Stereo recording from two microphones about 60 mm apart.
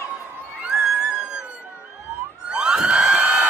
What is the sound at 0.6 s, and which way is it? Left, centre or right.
Music, centre.